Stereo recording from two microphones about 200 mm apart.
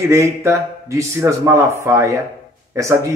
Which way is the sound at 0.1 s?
15° right (ahead or behind).